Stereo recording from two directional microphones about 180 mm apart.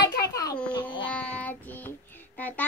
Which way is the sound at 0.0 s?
20° left (ahead or behind).